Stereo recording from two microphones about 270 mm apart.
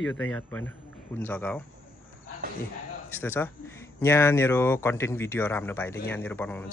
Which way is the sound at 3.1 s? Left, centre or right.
Centre.